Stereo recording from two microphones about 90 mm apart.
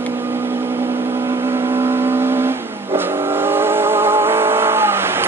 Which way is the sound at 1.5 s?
30° right (ahead or behind).